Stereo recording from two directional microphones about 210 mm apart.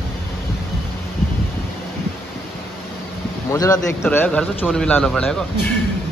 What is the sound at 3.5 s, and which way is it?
A man's voice, 15° left (ahead or behind).